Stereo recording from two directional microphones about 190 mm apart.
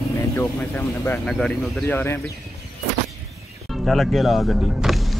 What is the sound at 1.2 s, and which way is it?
Speech, 5° left (ahead or behind).